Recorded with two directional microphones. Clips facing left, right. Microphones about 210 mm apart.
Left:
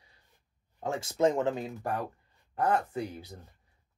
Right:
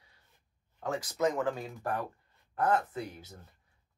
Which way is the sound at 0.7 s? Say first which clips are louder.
Left 3 dB; 25° left (ahead or behind).